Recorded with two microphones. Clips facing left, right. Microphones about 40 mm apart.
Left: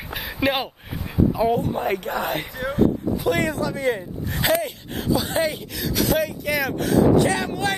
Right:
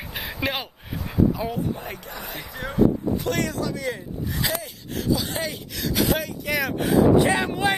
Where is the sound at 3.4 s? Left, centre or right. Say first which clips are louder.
Left 4 dB; left.